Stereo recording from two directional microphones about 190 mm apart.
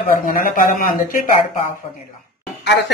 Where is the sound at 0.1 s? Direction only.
50° left (ahead or behind).